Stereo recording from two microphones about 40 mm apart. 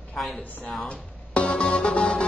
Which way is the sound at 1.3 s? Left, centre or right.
Left.